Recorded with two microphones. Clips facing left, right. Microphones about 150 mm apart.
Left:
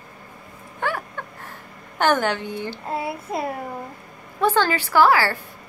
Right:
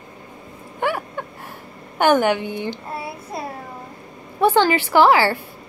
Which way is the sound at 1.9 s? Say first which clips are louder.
Right 4 dB; 10° right (ahead or behind).